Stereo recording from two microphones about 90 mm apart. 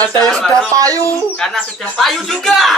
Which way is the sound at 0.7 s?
40° right (ahead or behind).